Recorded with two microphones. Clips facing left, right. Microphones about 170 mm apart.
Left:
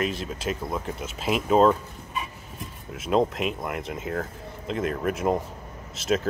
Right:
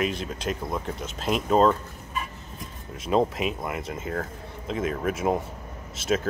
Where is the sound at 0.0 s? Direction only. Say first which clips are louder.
Even; centre (ahead or behind).